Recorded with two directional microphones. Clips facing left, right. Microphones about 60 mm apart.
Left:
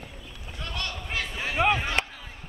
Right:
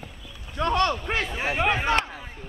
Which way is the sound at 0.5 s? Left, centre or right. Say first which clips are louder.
Right 13 dB; right.